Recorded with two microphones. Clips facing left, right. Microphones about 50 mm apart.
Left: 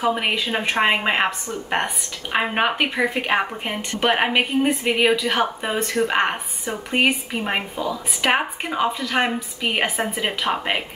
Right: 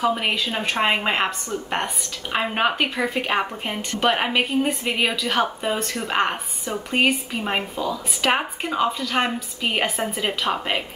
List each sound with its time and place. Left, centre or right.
0.0 s a woman's voice: centre
2.3 s a woman's voice: centre